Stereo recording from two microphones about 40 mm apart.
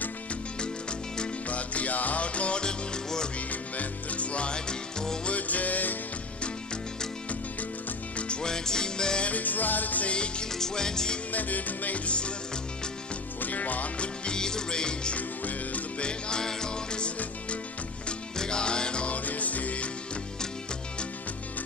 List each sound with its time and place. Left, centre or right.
0.6 s music: left
1.5 s music: left; by 3.3 s centre
3.3 s music: left; by 5.3 s centre
5.3 s music: left
8.2 s music: left
9.2 s music: left
10.0 s music: left
10.5 s music: centre
11.3 s music: left
13.4 s music: left
13.9 s music: left
15.1 s music: left
16.0 s music: left
19.0 s music: left